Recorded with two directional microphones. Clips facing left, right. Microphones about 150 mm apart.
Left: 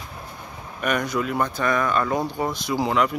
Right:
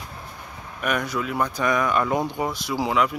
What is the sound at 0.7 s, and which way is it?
Speech, 5° right (ahead or behind).